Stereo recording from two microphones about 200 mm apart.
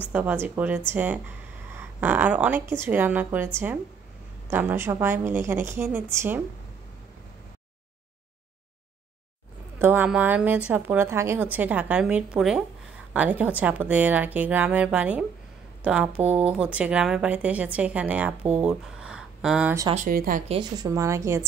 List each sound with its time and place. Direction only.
0.1 s speech: 10° right (ahead or behind)
9.8 s speech: 10° right (ahead or behind)
19.9 s speech: 40° right (ahead or behind)
20.4 s speech: 20° right (ahead or behind)